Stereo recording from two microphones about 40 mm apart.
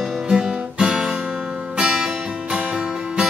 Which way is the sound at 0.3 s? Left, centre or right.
Centre.